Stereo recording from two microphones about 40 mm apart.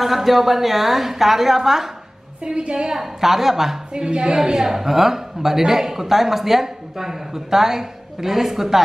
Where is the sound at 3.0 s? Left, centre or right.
Centre.